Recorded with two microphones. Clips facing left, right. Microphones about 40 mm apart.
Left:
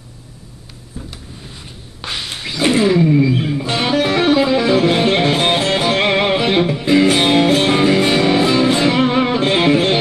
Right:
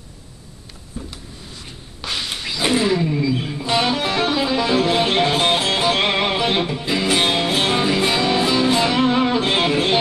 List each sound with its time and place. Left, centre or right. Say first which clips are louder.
1.0 s a sound: even; centre
2.1 s a sound: even; centre
2.6 s vehicle: left 5 dB; centre
3.5 s music: left 3 dB; left
6.5 s music: left 5 dB; left
6.8 s music: left 6 dB; left
7.5 s music: left 5 dB; left